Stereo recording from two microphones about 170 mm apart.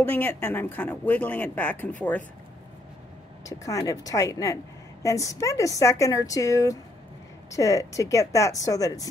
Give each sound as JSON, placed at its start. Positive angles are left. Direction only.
{"t": 0.0, "sound": "speech", "side_deg": 10}
{"t": 3.4, "sound": "a woman's voice", "side_deg": 20}